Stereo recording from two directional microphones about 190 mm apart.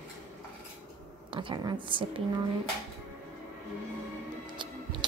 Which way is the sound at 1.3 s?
25° right (ahead or behind).